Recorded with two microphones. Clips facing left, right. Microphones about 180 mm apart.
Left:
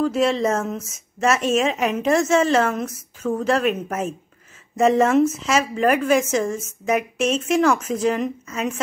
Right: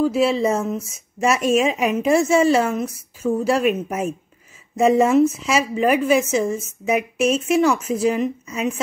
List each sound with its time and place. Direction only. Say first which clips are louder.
0.0 s a woman's voice: right 1 dB; 5° right (ahead or behind)